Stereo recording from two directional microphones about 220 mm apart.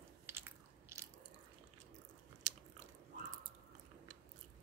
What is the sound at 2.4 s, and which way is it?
Biting, 30° right (ahead or behind).